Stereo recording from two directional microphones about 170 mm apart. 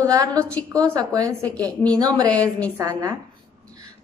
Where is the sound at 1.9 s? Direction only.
25° right (ahead or behind).